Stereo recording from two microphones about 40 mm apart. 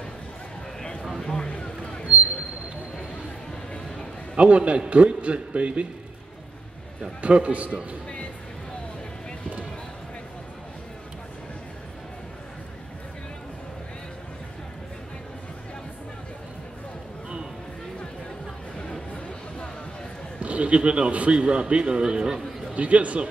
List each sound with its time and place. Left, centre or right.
1.2 s a sound: left
4.4 s a man's voice: right
7.2 s a man's voice: right
18.8 s a sound: left
20.3 s a man's voice: right; by 22.4 s centre
22.8 s a man's voice: right